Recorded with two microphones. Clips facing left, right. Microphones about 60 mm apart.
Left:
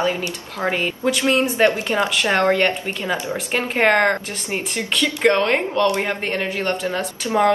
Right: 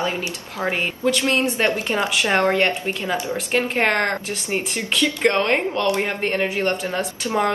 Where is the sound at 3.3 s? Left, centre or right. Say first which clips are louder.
Right 1 dB; centre.